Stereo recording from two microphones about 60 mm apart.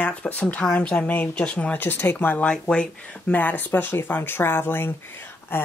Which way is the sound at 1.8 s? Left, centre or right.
Left.